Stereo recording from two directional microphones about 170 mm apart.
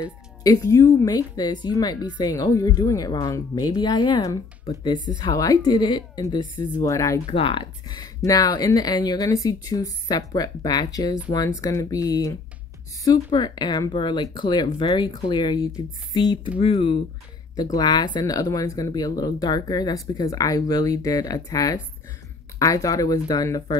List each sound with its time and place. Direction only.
0.4 s speech: 20° left (ahead or behind)
7.2 s speech: 30° left (ahead or behind)